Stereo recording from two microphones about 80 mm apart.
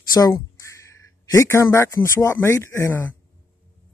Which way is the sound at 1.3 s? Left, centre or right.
Left.